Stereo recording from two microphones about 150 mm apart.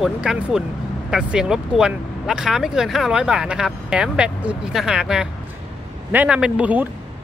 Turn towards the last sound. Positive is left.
turn(degrees=-10)  # may be behind; listen again after turning